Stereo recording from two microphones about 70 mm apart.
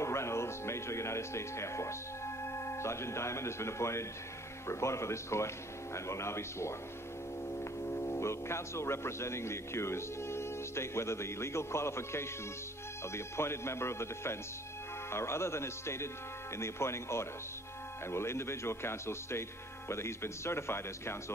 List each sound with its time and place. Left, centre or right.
0.0 s speech: left